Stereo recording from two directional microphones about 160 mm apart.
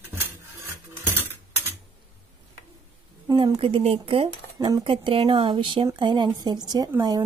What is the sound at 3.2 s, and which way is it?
Speech, 25° right (ahead or behind).